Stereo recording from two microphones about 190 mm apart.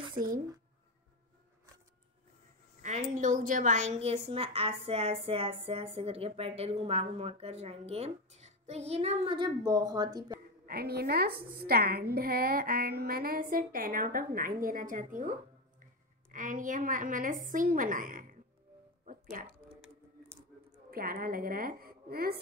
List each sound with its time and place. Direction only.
0.2 s speech: 30° right (ahead or behind)
2.8 s a woman's voice: 40° right (ahead or behind); by 10.4 s 20° right (ahead or behind)
10.7 s a woman's voice: 55° right (ahead or behind)
19.4 s a woman's voice: 45° right (ahead or behind)
20.9 s a woman's voice: 50° right (ahead or behind)